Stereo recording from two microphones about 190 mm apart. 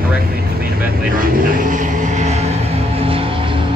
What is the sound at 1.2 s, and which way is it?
Vehicle, 45° right (ahead or behind).